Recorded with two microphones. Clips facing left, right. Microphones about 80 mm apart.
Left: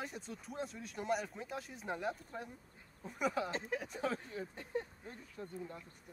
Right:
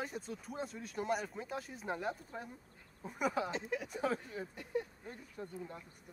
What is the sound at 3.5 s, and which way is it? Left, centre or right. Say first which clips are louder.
Speech: right 1 dB; left.